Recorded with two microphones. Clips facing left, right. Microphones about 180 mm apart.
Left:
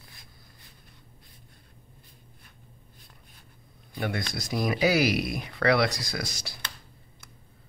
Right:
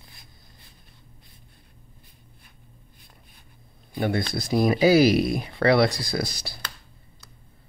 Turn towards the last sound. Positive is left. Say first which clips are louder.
# right 6 dB
turn(degrees=-30)  # may be behind; listen again after turning